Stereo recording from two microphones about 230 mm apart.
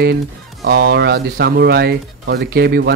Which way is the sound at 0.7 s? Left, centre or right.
Right.